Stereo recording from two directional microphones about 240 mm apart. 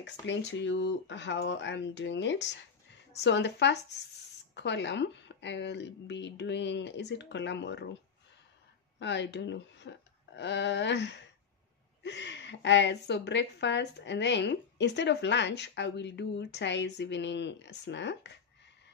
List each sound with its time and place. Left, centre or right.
0.0 s a woman's voice: left
9.0 s a woman's voice: left